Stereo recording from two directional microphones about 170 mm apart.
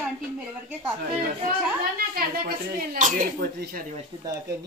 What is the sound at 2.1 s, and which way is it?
Speech, 55° right (ahead or behind).